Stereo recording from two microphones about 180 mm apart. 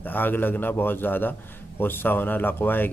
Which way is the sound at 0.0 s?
10° left (ahead or behind).